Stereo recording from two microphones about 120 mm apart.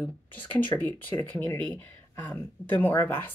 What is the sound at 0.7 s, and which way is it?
Speech, 30° left (ahead or behind).